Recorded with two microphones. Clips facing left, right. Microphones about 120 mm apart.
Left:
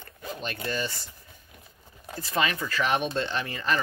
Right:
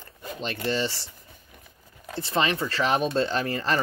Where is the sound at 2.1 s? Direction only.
25° right (ahead or behind).